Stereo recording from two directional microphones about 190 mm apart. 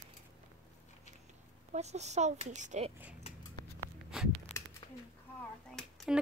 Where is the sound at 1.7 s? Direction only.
35° right (ahead or behind).